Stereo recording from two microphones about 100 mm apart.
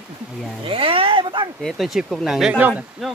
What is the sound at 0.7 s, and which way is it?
Speech, 65° right (ahead or behind).